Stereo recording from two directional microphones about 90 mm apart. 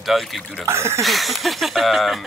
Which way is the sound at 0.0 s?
Centre (ahead or behind).